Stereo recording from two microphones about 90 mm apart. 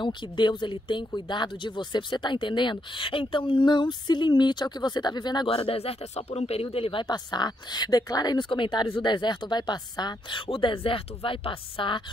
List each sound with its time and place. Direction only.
0.0 s speech: 60° left (ahead or behind)
5.5 s speech: 90° left
7.1 s speech: 50° left (ahead or behind); by 12.0 s 80° left